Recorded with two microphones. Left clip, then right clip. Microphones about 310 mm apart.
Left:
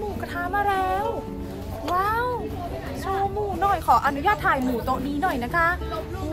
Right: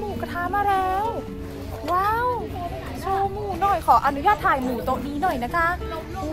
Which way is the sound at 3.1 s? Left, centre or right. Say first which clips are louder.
Right 1 dB; centre.